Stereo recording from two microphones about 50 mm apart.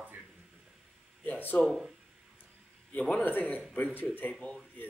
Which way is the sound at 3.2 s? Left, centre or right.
Left.